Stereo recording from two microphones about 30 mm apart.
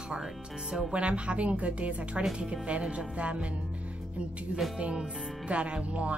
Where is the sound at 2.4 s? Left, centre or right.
Right.